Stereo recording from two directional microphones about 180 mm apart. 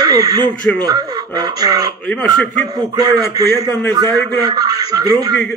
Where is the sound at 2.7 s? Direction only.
20° right (ahead or behind).